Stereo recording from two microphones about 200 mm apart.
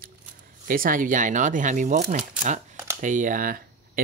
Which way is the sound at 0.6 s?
45° right (ahead or behind).